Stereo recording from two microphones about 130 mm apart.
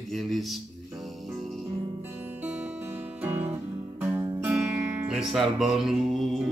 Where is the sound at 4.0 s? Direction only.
15° right (ahead or behind).